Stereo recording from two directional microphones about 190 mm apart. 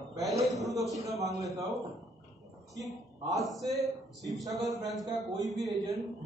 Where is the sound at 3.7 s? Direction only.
Centre (ahead or behind).